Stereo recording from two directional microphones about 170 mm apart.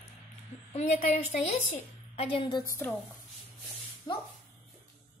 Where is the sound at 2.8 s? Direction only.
10° left (ahead or behind).